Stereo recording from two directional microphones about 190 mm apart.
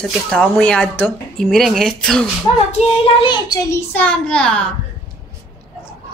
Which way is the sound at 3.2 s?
20° left (ahead or behind).